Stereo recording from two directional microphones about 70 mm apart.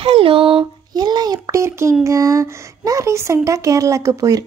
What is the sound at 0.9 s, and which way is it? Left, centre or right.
Speech, right.